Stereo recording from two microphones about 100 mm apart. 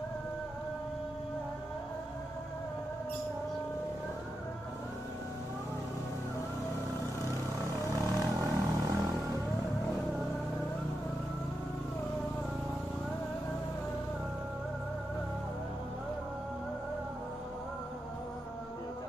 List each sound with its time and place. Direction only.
7.6 s vehicle: 30° right (ahead or behind)